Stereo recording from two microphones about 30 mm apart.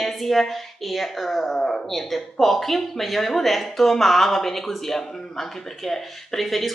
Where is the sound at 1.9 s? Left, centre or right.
Centre.